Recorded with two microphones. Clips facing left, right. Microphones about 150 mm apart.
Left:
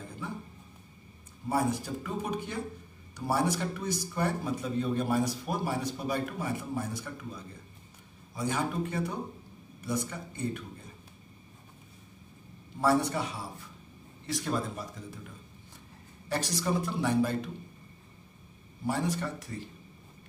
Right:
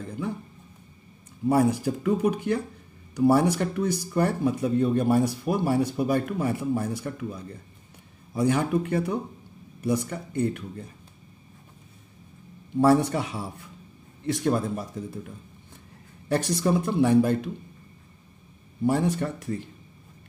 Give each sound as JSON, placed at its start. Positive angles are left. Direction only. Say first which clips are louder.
{"t": 1.5, "sound": "speech", "louder": "right 7 dB", "side_deg": -65}
{"t": 8.4, "sound": "speech", "louder": "right 8 dB", "side_deg": -60}
{"t": 12.8, "sound": "speech", "louder": "right 6 dB", "side_deg": -55}
{"t": 16.3, "sound": "speech", "louder": "right 7 dB", "side_deg": -55}
{"t": 18.9, "sound": "speech", "louder": "right 7 dB", "side_deg": -55}